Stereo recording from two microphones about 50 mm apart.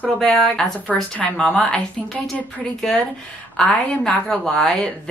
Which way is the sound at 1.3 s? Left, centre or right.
Centre.